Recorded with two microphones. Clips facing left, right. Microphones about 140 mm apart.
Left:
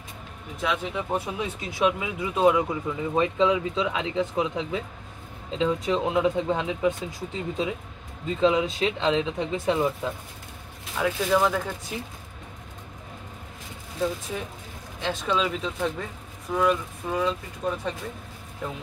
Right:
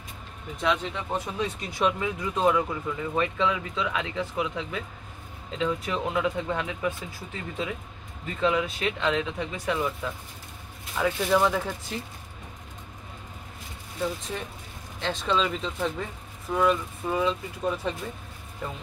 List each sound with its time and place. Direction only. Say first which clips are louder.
0.6 s speech: even; 5° left (ahead or behind); by 9.9 s 25° left (ahead or behind)
11.0 s speech: even; 5° left (ahead or behind)
14.3 s speech: left 2 dB; 5° left (ahead or behind)